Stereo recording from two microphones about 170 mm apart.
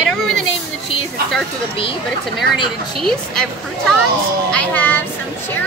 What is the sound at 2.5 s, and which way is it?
Speech, centre (ahead or behind).